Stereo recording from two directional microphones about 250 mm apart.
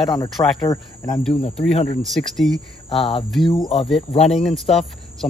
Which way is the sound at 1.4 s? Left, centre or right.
Left.